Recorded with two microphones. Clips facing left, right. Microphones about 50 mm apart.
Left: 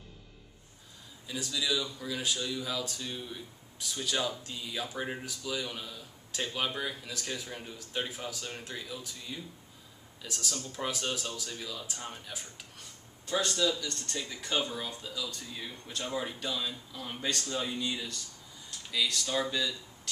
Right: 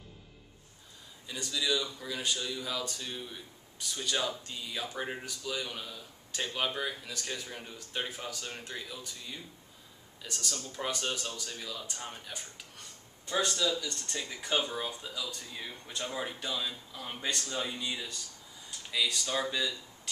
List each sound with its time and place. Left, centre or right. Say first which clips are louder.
1.2 s speech: even; centre